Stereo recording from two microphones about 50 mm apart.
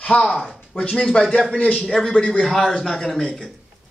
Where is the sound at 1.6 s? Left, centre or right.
Left.